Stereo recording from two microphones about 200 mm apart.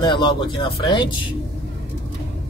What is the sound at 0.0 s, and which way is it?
Speech, 25° left (ahead or behind).